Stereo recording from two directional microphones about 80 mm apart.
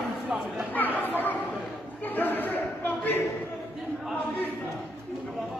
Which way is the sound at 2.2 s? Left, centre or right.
Left.